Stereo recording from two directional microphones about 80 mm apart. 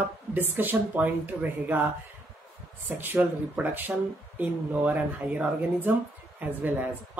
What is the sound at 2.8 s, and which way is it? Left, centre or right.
Speech, right.